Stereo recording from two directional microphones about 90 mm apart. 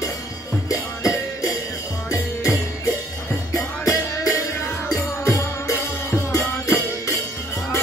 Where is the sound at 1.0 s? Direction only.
35° left (ahead or behind).